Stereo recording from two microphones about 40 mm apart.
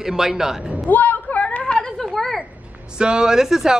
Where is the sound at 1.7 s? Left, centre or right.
Centre.